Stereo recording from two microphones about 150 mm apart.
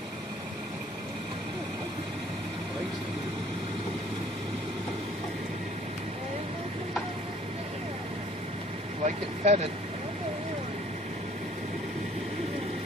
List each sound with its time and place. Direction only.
9.0 s speech: 45° right (ahead or behind)